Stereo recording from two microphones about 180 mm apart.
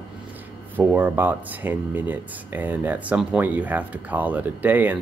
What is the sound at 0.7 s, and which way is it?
Speech, 10° right (ahead or behind).